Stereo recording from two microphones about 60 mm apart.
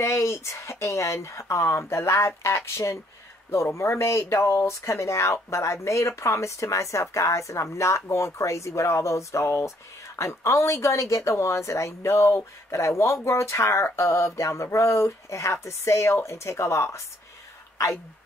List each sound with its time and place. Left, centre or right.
0.0 s speech: left